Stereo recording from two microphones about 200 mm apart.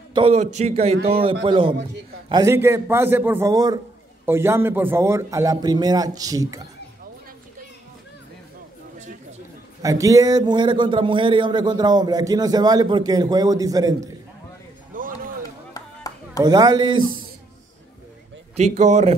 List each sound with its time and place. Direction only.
0.1 s a man's voice: 30° right (ahead or behind)
9.8 s a man's voice: 15° right (ahead or behind)
15.0 s a sound: 45° right (ahead or behind)
15.7 s a sound: 15° left (ahead or behind)
16.4 s a man's voice: 20° right (ahead or behind)
18.6 s a man's voice: 35° right (ahead or behind)